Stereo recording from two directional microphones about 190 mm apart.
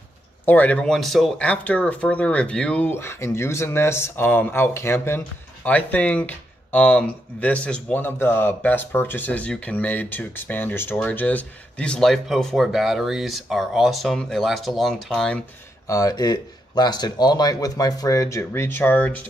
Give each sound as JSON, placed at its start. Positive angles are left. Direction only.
{"t": 0.5, "sound": "speech", "side_deg": 10}
{"t": 15.9, "sound": "speech", "side_deg": 20}